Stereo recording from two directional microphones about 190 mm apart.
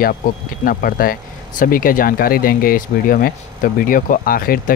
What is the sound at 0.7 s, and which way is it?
Speech, 50° left (ahead or behind).